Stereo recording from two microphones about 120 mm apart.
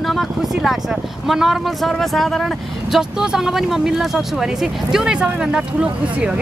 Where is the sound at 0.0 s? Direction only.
Centre (ahead or behind).